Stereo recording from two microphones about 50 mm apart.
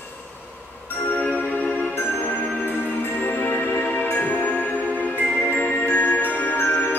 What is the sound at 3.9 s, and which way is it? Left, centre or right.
Music, left.